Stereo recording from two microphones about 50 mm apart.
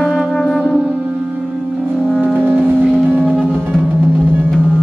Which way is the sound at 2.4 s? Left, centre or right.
Right.